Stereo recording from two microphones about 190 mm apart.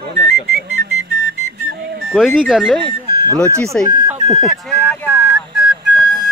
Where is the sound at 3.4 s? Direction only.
15° right (ahead or behind).